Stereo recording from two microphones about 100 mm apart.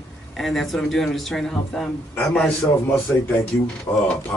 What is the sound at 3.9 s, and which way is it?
Speech, 25° left (ahead or behind).